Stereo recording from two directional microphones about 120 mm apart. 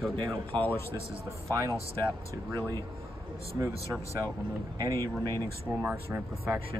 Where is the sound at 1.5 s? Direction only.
25° right (ahead or behind).